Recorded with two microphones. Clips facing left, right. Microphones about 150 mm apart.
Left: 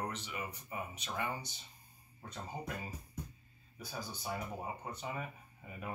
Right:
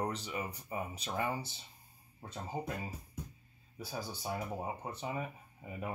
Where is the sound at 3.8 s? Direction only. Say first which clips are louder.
Right 3 dB; 30° right (ahead or behind).